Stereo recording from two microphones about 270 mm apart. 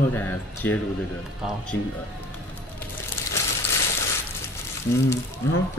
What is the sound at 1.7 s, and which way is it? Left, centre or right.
Speech, left.